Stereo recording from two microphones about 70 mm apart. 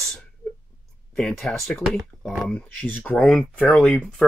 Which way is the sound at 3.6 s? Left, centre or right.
Left.